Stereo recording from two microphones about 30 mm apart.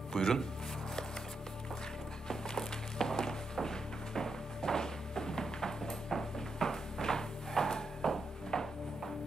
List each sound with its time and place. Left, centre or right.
0.1 s speech: centre
2.2 s music: centre
8.1 s a sound: centre